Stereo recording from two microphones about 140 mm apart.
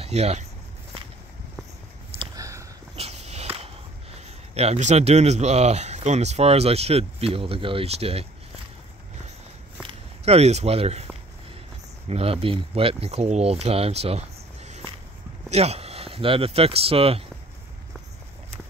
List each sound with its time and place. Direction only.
0.0 s speech: 50° right (ahead or behind)
2.3 s a sound: 25° right (ahead or behind)
3.0 s speech: 50° right (ahead or behind)
9.8 s speech: 45° right (ahead or behind)
12.1 s speech: 45° right (ahead or behind)